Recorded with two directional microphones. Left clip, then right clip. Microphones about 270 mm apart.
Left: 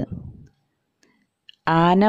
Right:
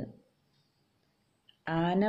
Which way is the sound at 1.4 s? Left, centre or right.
Left.